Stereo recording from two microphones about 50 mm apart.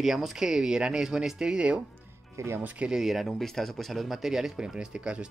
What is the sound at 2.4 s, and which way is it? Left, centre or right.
Speech, right.